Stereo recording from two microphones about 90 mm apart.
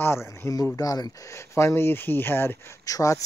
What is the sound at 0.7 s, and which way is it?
Speech, 45° left (ahead or behind).